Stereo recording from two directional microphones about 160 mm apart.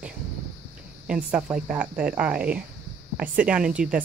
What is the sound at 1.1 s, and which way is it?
Speech, 10° right (ahead or behind).